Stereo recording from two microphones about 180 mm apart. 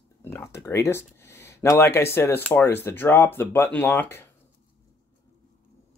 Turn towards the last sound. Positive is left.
turn(degrees=10)  # may be behind; listen again after turning